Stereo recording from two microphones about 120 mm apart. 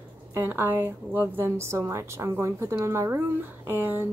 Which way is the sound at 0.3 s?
15° right (ahead or behind).